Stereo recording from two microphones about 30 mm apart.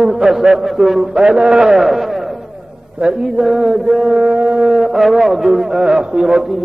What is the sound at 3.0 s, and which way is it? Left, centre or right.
Speech, right.